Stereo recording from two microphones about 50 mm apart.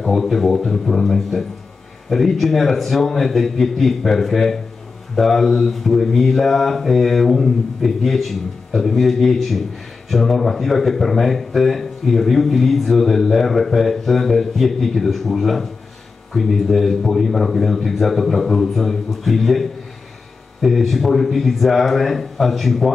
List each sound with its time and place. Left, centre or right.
0.0 s mantra: centre